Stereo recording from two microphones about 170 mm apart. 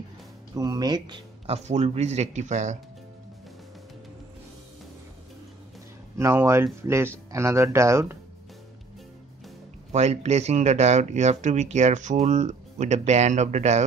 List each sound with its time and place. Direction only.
0.6 s speech: 20° right (ahead or behind)
1.7 s speech: 40° right (ahead or behind)
6.1 s speech: 15° right (ahead or behind)
9.9 s speech: 40° right (ahead or behind)